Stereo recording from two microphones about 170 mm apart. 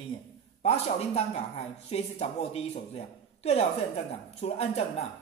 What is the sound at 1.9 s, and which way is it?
Speech, 40° left (ahead or behind).